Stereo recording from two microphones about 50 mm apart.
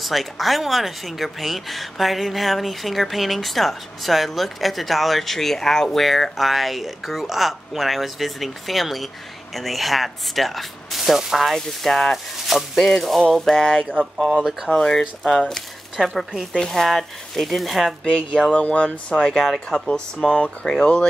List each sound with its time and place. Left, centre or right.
0.0 s a woman's voice: centre
11.5 s a woman's voice: centre
13.9 s a woman's voice: centre
14.7 s speech: centre
16.1 s a woman's voice: centre
16.5 s a woman's voice: centre
18.5 s speech: left